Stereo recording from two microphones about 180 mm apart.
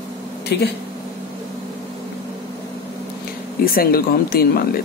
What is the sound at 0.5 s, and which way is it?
Speech, 70° left (ahead or behind).